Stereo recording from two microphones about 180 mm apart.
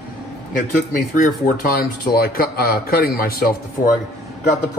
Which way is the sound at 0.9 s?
50° left (ahead or behind).